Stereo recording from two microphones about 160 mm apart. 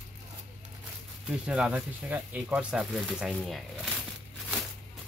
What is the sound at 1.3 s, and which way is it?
Speech, 5° right (ahead or behind).